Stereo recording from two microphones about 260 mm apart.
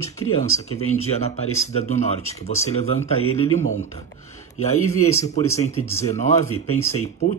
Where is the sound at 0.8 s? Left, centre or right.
Left.